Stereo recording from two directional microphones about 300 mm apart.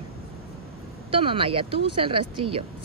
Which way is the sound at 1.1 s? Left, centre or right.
Centre.